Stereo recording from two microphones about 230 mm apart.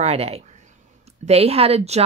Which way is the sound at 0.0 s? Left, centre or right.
Right.